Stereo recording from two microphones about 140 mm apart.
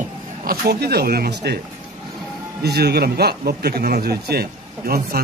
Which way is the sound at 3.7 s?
90° right.